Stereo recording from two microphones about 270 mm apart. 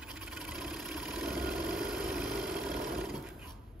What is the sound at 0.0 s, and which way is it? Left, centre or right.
Vehicle, centre.